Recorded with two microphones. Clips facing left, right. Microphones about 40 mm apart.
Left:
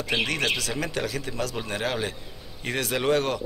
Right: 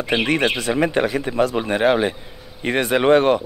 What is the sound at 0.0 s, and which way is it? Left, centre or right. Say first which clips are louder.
Speech: right 7 dB; right.